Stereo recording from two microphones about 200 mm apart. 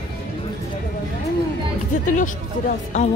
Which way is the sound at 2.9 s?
35° left (ahead or behind).